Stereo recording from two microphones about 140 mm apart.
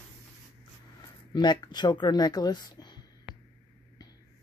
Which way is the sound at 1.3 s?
30° left (ahead or behind).